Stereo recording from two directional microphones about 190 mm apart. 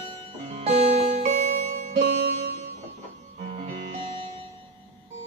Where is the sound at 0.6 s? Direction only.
35° right (ahead or behind).